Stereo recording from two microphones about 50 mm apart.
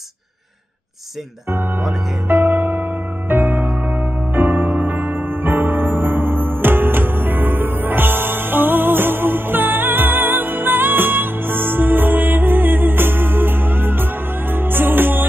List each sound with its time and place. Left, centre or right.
2.2 s music: right